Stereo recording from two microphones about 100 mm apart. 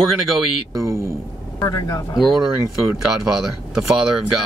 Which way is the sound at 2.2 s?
Centre (ahead or behind).